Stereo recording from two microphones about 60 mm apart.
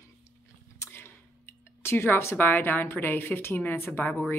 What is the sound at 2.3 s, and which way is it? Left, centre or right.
A woman's voice, left.